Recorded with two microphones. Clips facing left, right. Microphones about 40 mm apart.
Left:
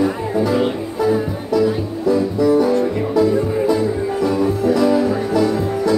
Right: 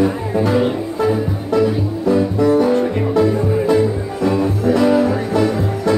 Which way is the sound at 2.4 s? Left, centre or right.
Right.